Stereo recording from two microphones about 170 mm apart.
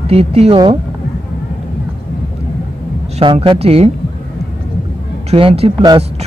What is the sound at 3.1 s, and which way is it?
Speech, 30° right (ahead or behind).